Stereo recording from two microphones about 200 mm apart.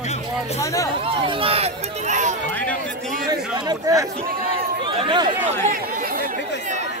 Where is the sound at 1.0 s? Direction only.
25° right (ahead or behind).